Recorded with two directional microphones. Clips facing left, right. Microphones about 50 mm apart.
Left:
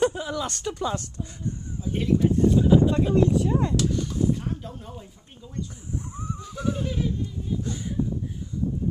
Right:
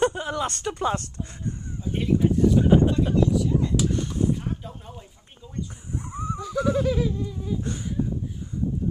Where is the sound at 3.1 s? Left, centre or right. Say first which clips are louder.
Left 1 dB; left.